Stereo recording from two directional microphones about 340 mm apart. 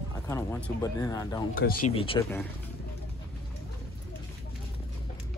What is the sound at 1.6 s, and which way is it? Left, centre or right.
Speech, left.